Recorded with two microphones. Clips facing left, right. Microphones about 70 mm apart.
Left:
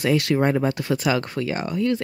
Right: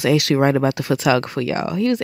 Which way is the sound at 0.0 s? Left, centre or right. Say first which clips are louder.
Right 4 dB; right.